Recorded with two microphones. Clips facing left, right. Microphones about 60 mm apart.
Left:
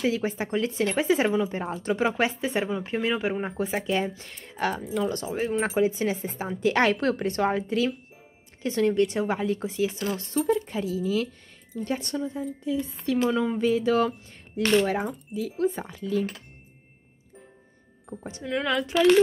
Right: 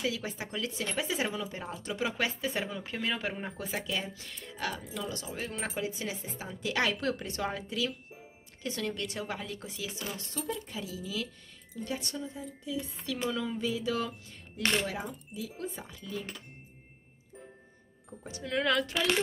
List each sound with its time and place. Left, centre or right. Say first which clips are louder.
0.0 s speech: left 8 dB; left
5.3 s speech: left 11 dB; left
18.4 s a woman's voice: left 2 dB; centre